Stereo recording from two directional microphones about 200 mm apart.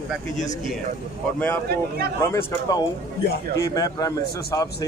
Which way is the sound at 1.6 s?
50° right (ahead or behind).